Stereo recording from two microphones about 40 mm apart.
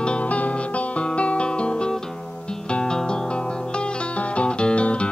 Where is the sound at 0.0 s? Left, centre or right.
Left.